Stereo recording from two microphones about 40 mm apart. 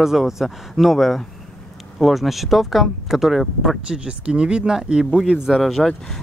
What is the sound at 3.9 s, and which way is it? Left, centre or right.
Speech, right.